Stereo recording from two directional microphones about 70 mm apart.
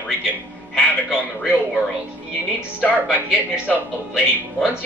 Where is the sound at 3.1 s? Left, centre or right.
Centre.